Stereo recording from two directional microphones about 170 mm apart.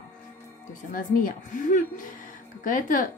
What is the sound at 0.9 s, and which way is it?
A woman's voice, 55° left (ahead or behind).